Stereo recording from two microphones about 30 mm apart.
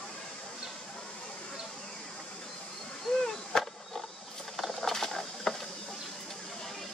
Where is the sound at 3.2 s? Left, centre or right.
Centre.